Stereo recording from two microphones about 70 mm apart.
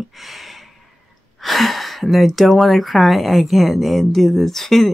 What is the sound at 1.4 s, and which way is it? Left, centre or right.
A woman's voice, centre.